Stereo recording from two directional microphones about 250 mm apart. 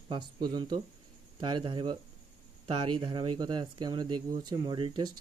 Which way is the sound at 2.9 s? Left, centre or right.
Centre.